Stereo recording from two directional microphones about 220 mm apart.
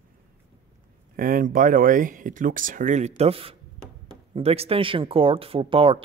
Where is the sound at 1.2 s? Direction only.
40° right (ahead or behind).